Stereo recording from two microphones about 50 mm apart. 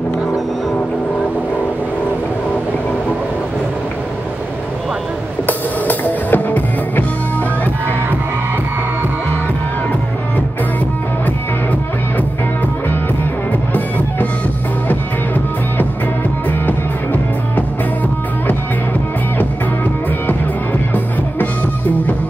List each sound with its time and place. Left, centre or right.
5.5 s music: left
16.4 s music: left
20.9 s music: left